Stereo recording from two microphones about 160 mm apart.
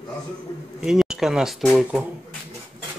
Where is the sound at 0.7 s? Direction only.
5° right (ahead or behind).